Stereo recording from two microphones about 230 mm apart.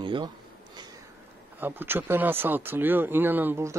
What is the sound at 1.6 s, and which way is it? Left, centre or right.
Speech, centre.